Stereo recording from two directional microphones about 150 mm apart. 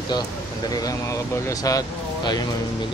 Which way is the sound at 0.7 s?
25° left (ahead or behind).